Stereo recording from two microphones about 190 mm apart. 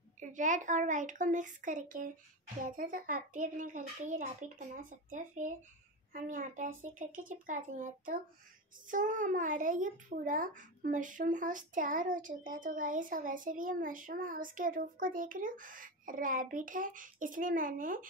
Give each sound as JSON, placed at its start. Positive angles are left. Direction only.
{"t": 0.2, "sound": "a child's voice", "side_deg": -40}